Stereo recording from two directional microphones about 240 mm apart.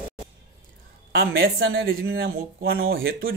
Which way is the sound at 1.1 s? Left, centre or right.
Right.